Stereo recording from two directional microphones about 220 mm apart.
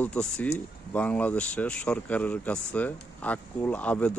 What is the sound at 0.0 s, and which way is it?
Speech, 5° left (ahead or behind).